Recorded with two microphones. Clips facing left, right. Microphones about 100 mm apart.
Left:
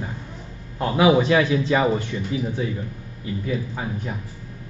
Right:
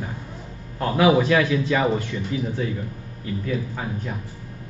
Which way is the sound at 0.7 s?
20° left (ahead or behind).